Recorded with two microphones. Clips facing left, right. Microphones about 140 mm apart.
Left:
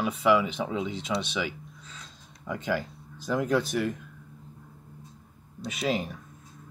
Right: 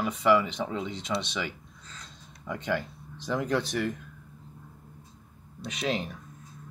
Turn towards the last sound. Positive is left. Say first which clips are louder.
# left 2 dB
turn(degrees=5)  # may be behind; listen again after turning